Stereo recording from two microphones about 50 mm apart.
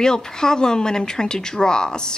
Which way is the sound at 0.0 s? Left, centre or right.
Centre.